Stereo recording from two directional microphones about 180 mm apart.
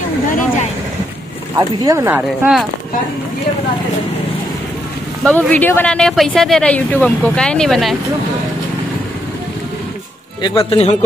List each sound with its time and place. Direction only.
1.8 s speech: 15° right (ahead or behind)
5.2 s speech: 5° left (ahead or behind)
10.4 s speech: 30° left (ahead or behind)